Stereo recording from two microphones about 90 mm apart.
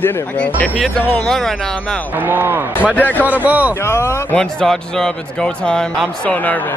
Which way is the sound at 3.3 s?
20° right (ahead or behind).